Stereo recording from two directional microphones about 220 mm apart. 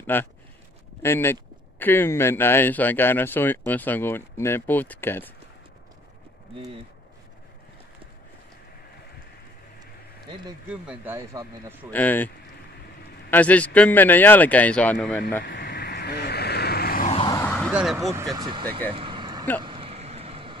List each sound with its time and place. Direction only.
0.0 s speech: 10° left (ahead or behind)
10.7 s speech: 10° right (ahead or behind)
11.9 s speech: 10° left (ahead or behind)
13.3 s speech: 5° left (ahead or behind)
15.4 s vehicle: 45° left (ahead or behind)
17.1 s vehicle: 20° left (ahead or behind)
17.5 s a sound: centre (ahead or behind)
18.3 s speech: 20° right (ahead or behind)
18.9 s vehicle: 25° right (ahead or behind)